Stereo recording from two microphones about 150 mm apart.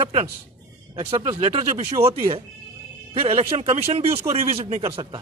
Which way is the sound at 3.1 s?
40° right (ahead or behind).